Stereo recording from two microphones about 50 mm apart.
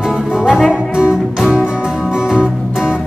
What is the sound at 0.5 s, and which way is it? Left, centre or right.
Music, centre.